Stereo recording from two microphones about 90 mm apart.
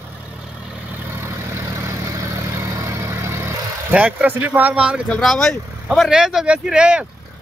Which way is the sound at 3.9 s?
15° right (ahead or behind).